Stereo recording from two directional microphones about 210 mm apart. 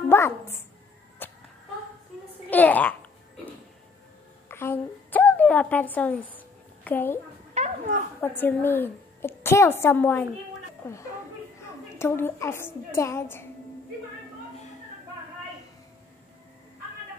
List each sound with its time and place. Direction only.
0.1 s speech: 10° left (ahead or behind)
1.2 s cat: 10° left (ahead or behind)
2.5 s a woman's voice: 10° left (ahead or behind)
4.5 s a sound: 10° left (ahead or behind)
7.5 s a sound: 35° right (ahead or behind)
8.2 s a woman's voice: 10° left (ahead or behind)